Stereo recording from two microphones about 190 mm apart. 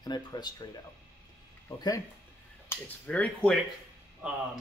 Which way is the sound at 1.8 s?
20° left (ahead or behind).